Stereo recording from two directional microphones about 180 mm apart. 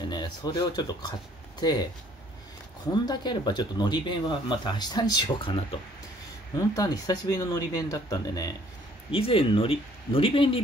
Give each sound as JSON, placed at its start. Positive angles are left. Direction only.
{"t": 0.1, "sound": "speech", "side_deg": 25}
{"t": 2.9, "sound": "speech", "side_deg": 25}
{"t": 9.1, "sound": "speech", "side_deg": 30}